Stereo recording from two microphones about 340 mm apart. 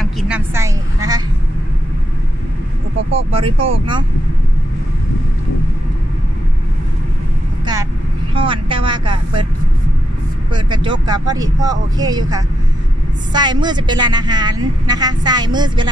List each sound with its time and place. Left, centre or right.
0.0 s speech: centre
3.2 s a woman's voice: centre
8.4 s a woman's voice: centre
10.5 s a woman's voice: centre